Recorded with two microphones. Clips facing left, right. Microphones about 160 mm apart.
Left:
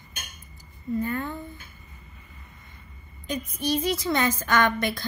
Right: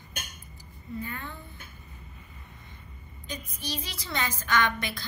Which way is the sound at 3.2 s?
55° left (ahead or behind).